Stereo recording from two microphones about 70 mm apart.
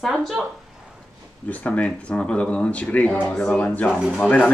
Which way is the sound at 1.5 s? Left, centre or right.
Centre.